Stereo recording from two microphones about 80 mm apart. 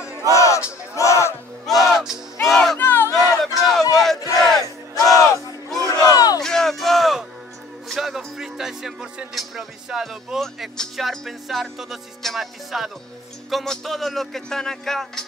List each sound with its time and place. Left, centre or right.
0.3 s crowd: left
1.7 s music: centre
2.8 s crowd: left
3.2 s a sound: centre
4.4 s battle cry: centre
5.0 s music: left
5.9 s battle cry: left
6.4 s a sound: centre
7.9 s music: centre
8.4 s speech: centre
9.3 s music: centre